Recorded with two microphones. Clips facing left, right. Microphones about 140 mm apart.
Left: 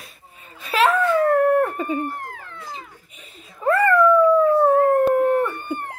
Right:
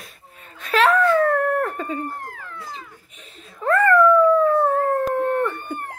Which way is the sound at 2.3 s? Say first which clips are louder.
Right 1 dB; 25° left (ahead or behind).